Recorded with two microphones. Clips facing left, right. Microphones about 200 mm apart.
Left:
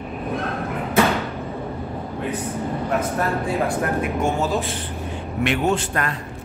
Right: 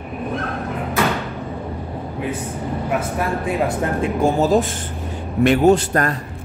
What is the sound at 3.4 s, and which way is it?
A man's voice, 20° right (ahead or behind).